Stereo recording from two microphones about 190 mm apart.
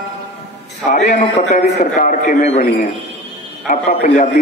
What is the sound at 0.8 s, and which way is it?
A man's voice, 40° left (ahead or behind).